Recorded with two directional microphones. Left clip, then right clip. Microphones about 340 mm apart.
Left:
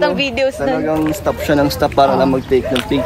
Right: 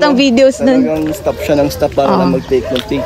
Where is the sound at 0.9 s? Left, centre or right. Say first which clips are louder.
Right 1 dB; centre.